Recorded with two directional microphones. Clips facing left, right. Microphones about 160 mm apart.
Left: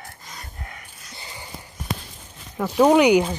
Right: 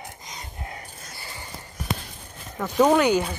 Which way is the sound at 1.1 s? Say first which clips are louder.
Left 3 dB; 20° left (ahead or behind).